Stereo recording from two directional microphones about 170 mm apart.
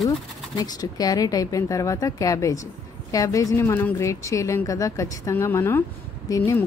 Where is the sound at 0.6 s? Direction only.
20° left (ahead or behind).